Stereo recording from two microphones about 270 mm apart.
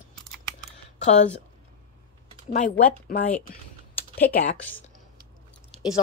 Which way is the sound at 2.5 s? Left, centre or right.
Left.